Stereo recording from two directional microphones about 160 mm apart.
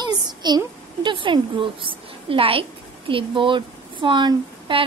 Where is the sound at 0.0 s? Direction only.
25° right (ahead or behind).